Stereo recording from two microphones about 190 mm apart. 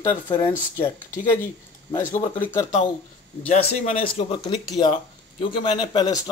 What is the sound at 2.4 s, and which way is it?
Speech, 10° left (ahead or behind).